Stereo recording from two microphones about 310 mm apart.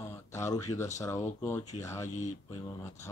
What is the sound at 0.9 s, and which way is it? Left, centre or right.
Speech, centre.